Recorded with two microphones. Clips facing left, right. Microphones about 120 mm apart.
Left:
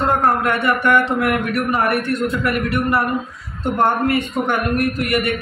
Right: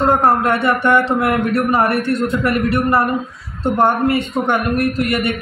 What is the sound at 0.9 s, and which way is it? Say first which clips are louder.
A man's voice: right 2 dB; 30° right (ahead or behind).